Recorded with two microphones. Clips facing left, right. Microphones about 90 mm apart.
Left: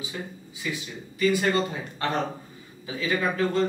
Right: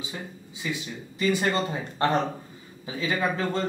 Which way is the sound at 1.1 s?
30° right (ahead or behind).